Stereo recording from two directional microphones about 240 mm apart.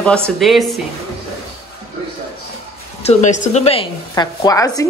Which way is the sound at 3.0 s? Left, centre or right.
Left.